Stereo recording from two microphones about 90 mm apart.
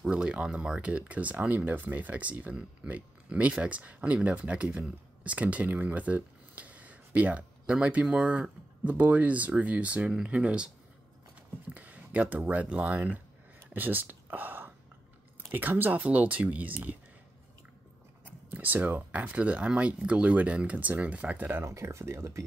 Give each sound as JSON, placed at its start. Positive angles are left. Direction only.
{"t": 0.0, "sound": "speech", "side_deg": -10}
{"t": 11.7, "sound": "speech", "side_deg": -15}
{"t": 13.7, "sound": "whispering", "side_deg": -20}
{"t": 15.5, "sound": "speech", "side_deg": -20}
{"t": 18.2, "sound": "speech", "side_deg": -20}